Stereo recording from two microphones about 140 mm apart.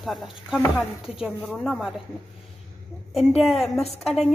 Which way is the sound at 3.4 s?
Centre (ahead or behind).